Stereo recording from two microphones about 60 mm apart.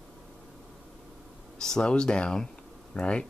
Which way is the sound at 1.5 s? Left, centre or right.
Centre.